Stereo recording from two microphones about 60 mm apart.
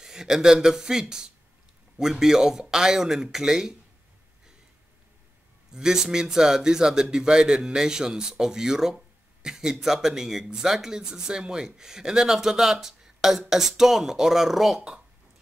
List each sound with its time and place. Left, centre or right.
0.0 s speech: centre
5.7 s speech: centre